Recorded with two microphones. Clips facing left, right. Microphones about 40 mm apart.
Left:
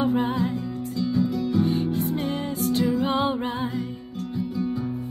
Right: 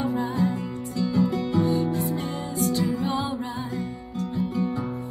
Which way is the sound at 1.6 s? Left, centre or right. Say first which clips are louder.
Right 1 dB; left.